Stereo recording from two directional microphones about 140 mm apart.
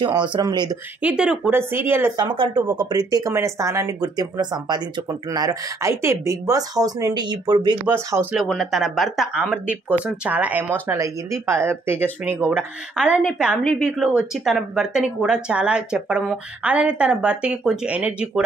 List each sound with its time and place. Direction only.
0.0 s speech: 35° right (ahead or behind)
1.0 s speech: 10° right (ahead or behind)
2.1 s speech: 30° right (ahead or behind)
7.8 s speech: 15° right (ahead or behind)
8.4 s speech: centre (ahead or behind)